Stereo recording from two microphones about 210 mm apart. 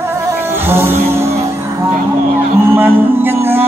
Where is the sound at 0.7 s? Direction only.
10° right (ahead or behind).